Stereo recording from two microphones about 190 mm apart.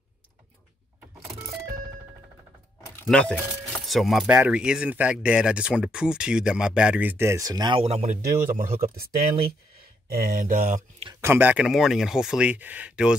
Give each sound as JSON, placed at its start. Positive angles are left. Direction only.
{"t": 3.0, "sound": "speech", "side_deg": 5}
{"t": 11.1, "sound": "speech", "side_deg": -10}